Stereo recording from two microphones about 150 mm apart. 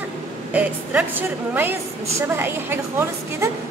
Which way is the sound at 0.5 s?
10° right (ahead or behind).